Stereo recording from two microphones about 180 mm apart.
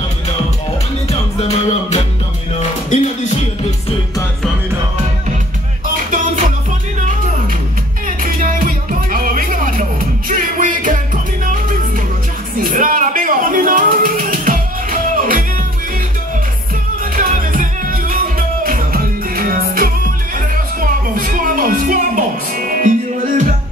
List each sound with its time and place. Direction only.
1.4 s music: 40° left (ahead or behind)
8.2 s music: 50° right (ahead or behind)
12.5 s music: 50° right (ahead or behind)
17.1 s music: 50° right (ahead or behind)